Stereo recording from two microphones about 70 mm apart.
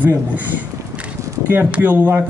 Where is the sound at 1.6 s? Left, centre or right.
Centre.